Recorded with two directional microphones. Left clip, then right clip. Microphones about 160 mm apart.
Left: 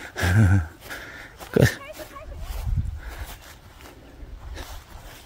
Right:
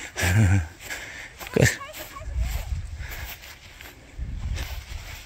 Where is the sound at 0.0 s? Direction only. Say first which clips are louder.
Left 1 dB; 35° left (ahead or behind).